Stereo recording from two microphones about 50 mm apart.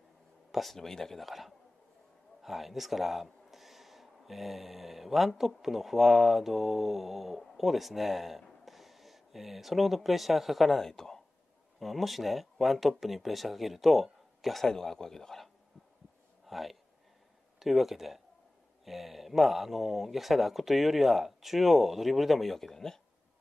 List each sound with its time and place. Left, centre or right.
0.5 s speech: centre
16.4 s a sound: centre
17.6 s speech: centre